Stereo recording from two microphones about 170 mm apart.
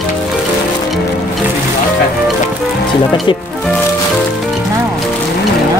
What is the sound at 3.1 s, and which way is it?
Speech, 25° left (ahead or behind).